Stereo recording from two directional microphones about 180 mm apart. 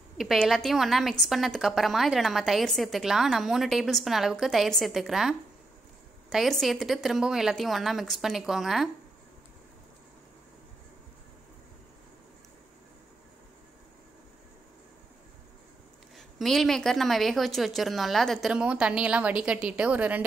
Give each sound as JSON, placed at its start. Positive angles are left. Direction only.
{"t": 0.2, "sound": "speech", "side_deg": 0}
{"t": 6.3, "sound": "speech", "side_deg": 0}
{"t": 16.2, "sound": "speech", "side_deg": 0}